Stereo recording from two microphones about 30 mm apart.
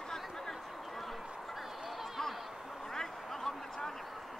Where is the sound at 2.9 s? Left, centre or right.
Centre.